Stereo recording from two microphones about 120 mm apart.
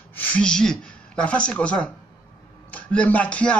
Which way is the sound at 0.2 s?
10° left (ahead or behind).